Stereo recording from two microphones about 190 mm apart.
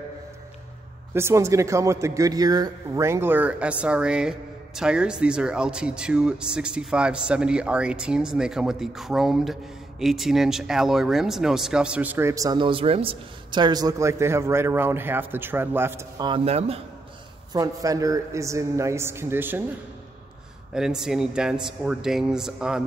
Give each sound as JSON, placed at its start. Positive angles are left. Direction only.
{"t": 1.1, "sound": "a man's voice", "side_deg": -15}
{"t": 16.3, "sound": "speech", "side_deg": -30}
{"t": 17.5, "sound": "a man's voice", "side_deg": -20}
{"t": 20.7, "sound": "a man's voice", "side_deg": -5}